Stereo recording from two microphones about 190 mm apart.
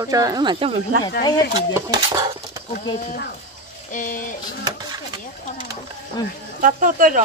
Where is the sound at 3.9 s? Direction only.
45° left (ahead or behind).